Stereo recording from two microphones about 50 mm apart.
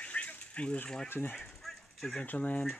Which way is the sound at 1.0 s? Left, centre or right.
Left.